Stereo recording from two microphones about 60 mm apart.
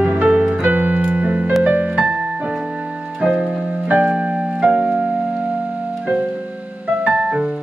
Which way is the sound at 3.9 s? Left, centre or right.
Centre.